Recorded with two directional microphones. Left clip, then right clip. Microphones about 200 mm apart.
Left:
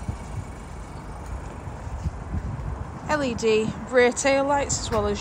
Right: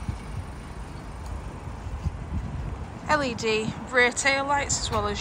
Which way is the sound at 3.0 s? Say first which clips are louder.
Left 1 dB; 15° left (ahead or behind).